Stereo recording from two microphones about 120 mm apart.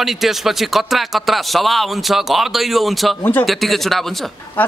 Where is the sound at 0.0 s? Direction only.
Centre (ahead or behind).